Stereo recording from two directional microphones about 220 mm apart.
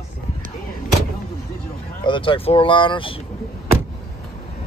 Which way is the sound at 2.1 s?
25° left (ahead or behind).